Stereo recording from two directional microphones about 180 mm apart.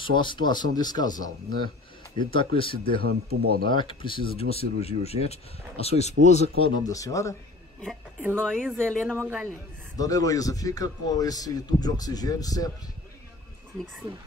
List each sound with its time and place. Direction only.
0.0 s speech: 25° left (ahead or behind)
3.0 s speech: 55° right (ahead or behind)
3.6 s speech: 30° left (ahead or behind)
6.8 s speech: 20° left (ahead or behind)
8.4 s speech: 5° left (ahead or behind)
9.9 s speech: 20° left (ahead or behind)